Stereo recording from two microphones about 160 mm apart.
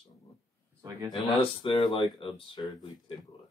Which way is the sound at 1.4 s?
35° left (ahead or behind).